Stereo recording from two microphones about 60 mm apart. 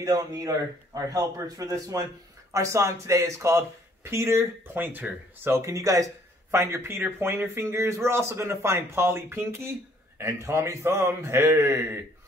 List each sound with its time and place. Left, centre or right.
0.0 s speech: right
0.9 s a man's voice: right
2.5 s speech: right
4.7 s speech: right
5.5 s speech: right
6.5 s speech: right